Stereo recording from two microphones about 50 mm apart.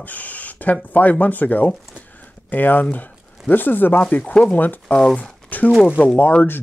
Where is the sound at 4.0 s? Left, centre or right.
Left.